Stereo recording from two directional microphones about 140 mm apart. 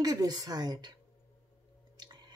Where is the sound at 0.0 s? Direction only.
25° right (ahead or behind).